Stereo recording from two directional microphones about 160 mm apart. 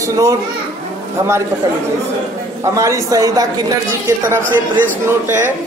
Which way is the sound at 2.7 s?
20° right (ahead or behind).